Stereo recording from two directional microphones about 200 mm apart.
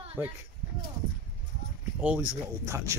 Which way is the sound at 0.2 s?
15° right (ahead or behind).